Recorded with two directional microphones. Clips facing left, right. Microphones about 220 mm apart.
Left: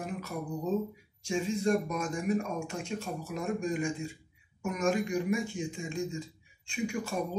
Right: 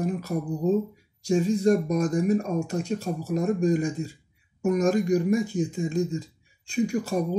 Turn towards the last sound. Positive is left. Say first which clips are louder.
# right 8 dB
turn(degrees=-40)  # may be behind; listen again after turning